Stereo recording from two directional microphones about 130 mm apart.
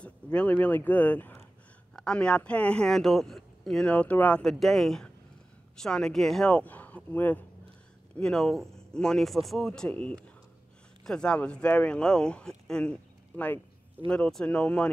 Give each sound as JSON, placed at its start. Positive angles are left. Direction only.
{"t": 0.0, "sound": "speech", "side_deg": 10}
{"t": 14.0, "sound": "speech", "side_deg": 10}